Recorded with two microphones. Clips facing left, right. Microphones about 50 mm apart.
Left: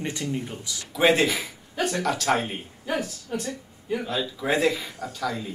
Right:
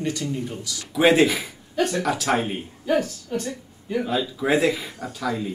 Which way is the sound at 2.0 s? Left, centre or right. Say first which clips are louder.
Right 1 dB; centre.